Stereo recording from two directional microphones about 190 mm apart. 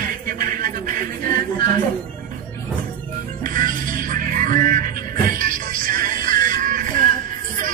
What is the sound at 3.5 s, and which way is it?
Music, 45° right (ahead or behind).